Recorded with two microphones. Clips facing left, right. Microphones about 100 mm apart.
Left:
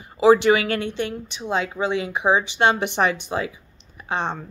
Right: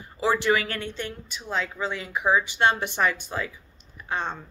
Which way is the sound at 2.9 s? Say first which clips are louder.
Left 4 dB; 70° left (ahead or behind).